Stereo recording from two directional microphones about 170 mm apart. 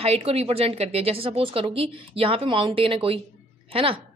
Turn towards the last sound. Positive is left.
turn(degrees=-35)  # may be behind; listen again after turning